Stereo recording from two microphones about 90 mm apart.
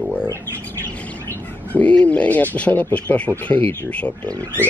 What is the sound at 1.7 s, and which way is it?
Speech, 15° left (ahead or behind).